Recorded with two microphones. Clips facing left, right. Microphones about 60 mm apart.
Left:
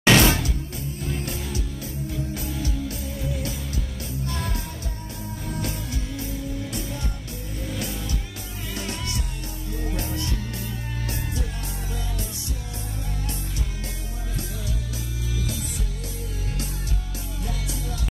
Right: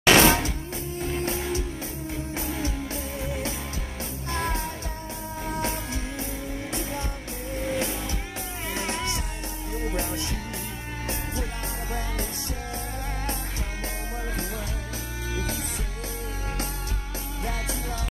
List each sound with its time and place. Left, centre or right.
0.0 s music: right
15.3 s music: right
17.4 s music: right